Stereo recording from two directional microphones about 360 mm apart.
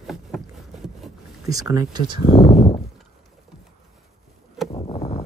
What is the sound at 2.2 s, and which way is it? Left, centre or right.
Speech, left.